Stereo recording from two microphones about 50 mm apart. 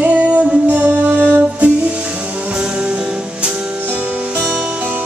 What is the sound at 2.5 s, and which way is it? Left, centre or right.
Music, centre.